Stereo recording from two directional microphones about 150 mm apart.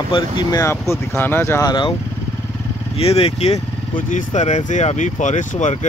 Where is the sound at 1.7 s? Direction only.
30° left (ahead or behind).